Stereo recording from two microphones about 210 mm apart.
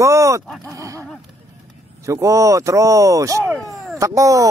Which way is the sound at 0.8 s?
15° right (ahead or behind).